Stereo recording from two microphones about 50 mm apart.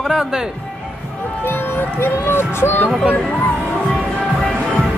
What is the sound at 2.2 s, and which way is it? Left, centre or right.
Speech, left.